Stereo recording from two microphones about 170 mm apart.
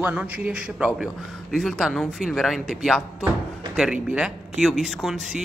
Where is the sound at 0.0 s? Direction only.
10° right (ahead or behind).